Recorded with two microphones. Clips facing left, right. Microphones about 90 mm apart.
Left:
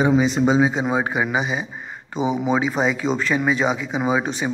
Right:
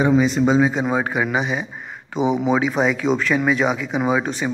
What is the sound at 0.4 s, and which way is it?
A man's voice, 15° left (ahead or behind).